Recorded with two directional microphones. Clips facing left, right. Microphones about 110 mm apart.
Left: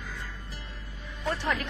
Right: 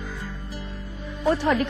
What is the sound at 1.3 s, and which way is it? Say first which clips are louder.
Speech: right 9 dB; 15° right (ahead or behind).